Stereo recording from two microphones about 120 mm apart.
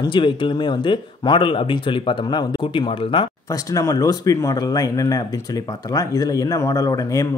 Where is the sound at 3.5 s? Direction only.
30° left (ahead or behind).